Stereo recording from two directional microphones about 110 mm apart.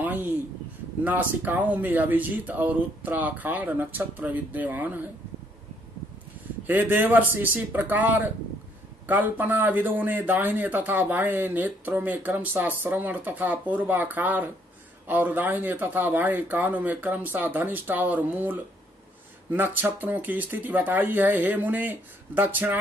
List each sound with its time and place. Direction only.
0.0 s a sound: 15° right (ahead or behind)
1.0 s a man's voice: 15° right (ahead or behind)
6.7 s a man's voice: 15° right (ahead or behind)